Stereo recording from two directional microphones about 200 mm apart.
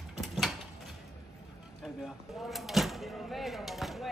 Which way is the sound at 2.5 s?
Centre (ahead or behind).